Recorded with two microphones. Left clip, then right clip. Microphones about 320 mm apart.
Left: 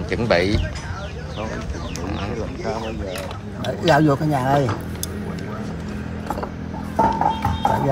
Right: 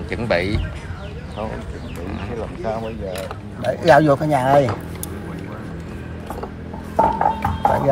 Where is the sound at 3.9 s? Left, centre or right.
Right.